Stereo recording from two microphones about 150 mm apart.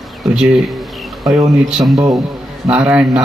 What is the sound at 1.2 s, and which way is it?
Speech, 20° right (ahead or behind).